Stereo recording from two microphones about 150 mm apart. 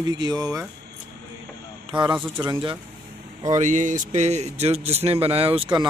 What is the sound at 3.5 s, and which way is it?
Speech, 55° right (ahead or behind).